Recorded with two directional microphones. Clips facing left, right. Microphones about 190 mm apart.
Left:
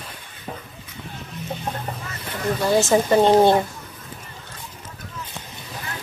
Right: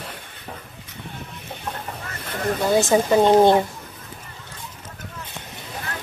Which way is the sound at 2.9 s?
15° right (ahead or behind).